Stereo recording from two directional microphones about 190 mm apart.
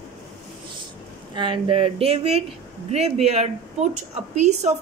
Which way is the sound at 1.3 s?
25° right (ahead or behind).